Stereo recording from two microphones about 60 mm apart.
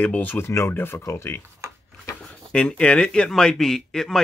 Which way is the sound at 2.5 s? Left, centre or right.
Centre.